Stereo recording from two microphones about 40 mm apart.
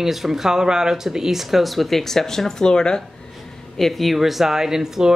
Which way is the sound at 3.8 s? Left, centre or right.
Centre.